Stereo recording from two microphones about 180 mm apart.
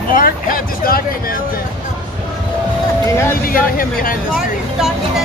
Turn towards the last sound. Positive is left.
turn(degrees=50)  # may be behind; listen again after turning